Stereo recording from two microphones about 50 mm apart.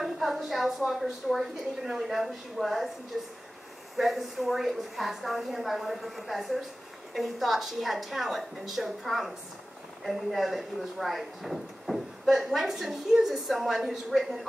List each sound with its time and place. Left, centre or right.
0.0 s a sound: centre
1.3 s speech: centre
3.9 s speech: centre